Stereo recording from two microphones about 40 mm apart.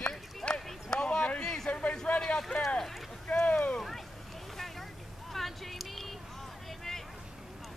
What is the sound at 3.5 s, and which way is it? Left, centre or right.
Boat, left.